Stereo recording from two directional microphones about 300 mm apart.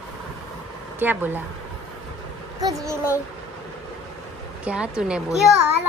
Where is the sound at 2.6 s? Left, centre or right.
Centre.